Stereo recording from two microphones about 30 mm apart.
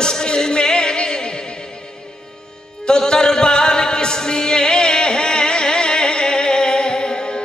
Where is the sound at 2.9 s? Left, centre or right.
Left.